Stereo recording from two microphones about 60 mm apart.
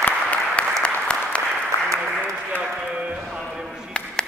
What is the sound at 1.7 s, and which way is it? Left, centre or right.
Applause, left.